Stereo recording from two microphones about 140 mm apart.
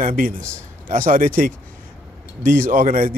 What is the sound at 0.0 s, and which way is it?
Speech, 75° right (ahead or behind).